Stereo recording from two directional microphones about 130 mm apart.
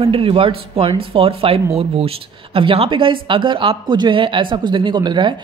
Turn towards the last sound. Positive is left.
turn(degrees=-35)  # may be behind; listen again after turning